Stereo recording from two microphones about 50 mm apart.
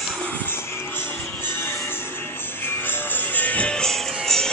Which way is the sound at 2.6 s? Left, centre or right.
Left.